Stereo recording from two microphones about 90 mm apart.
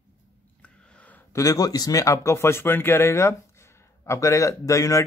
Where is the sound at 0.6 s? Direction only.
15° left (ahead or behind).